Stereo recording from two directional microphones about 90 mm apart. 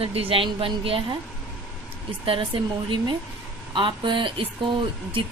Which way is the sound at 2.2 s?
85° right.